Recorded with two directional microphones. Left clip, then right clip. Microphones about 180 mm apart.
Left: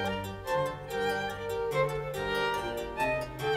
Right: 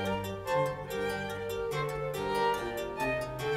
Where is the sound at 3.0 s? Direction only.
Centre (ahead or behind).